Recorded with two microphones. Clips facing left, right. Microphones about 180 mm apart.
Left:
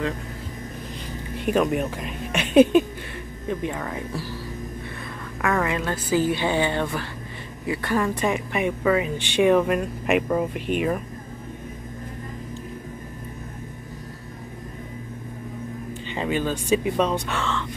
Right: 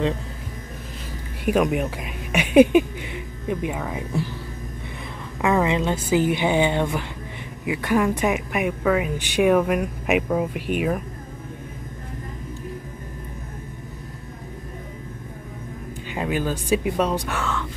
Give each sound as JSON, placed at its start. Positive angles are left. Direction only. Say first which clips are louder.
{"t": 1.4, "sound": "speech", "louder": "right 1 dB", "side_deg": -10}
{"t": 5.4, "sound": "a woman's voice", "louder": "right 4 dB", "side_deg": -20}
{"t": 16.2, "sound": "speech", "louder": "even", "side_deg": -5}